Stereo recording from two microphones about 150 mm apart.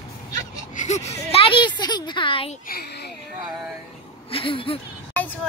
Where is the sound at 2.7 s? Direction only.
90° left.